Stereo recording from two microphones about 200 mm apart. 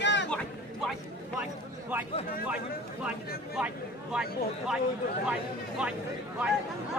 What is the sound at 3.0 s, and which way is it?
Speech, 5° right (ahead or behind).